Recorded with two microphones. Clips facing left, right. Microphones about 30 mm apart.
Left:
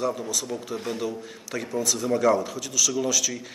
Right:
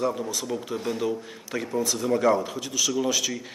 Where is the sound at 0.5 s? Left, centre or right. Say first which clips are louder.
Right 2 dB; centre.